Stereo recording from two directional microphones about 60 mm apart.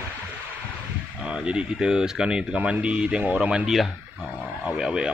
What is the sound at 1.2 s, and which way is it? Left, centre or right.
A man's voice, centre.